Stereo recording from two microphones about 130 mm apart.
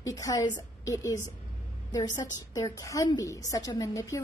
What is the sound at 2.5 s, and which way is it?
A woman's voice, 25° left (ahead or behind).